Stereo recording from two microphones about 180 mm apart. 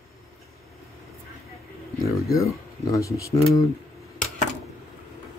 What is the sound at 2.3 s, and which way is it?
Speech, 15° left (ahead or behind).